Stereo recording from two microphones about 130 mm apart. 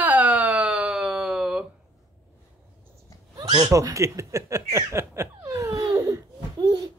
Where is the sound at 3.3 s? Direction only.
30° right (ahead or behind).